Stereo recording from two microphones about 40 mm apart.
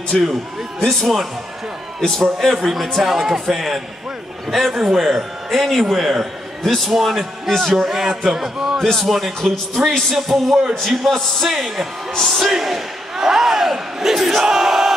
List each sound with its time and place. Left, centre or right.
0.1 s speech: centre
0.8 s a man's voice: centre
7.7 s speech: centre
8.7 s speech: centre
9.1 s a man's voice: centre
10.7 s a man's voice: centre
11.5 s speech: centre
12.1 s a man's voice: centre
12.4 s speech: centre